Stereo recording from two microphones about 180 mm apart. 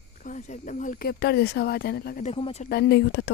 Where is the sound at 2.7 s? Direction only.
65° left (ahead or behind).